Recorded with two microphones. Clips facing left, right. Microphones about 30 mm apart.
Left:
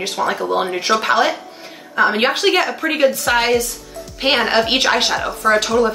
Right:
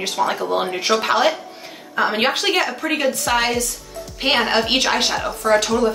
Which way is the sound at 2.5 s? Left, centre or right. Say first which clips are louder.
Left 3 dB; centre.